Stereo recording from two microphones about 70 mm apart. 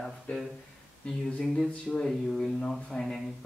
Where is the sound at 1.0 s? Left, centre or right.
Centre.